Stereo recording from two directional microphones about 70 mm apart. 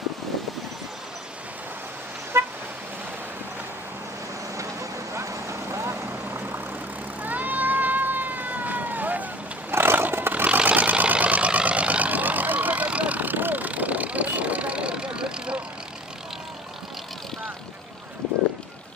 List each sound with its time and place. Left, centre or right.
2.3 s vehicle: right
4.6 s vehicle: right
7.2 s cat: right
10.4 s vehicle: centre